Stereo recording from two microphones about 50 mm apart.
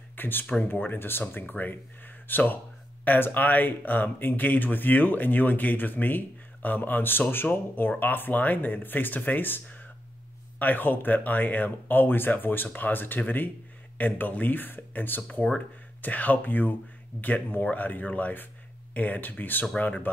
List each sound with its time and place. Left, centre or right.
0.1 s speech: left
1.2 s speech: left